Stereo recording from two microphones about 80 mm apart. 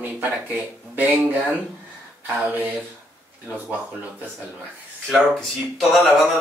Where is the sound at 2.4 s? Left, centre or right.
Right.